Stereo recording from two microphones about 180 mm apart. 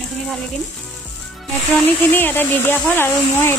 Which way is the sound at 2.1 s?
10° left (ahead or behind).